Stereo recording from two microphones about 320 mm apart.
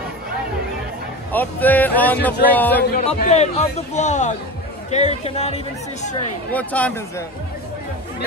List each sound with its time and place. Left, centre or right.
1.3 s speech: centre
2.8 s a man's voice: left
6.5 s speech: centre